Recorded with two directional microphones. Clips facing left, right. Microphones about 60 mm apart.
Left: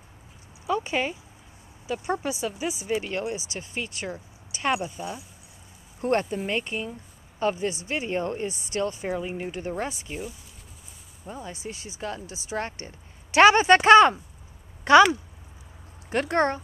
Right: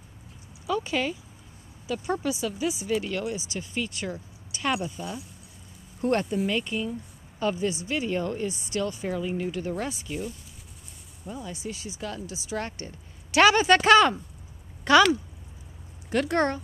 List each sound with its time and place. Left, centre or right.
0.7 s speech: left
6.0 s speech: left
11.4 s speech: left